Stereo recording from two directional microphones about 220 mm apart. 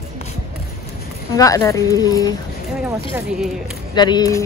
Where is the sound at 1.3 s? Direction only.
15° left (ahead or behind).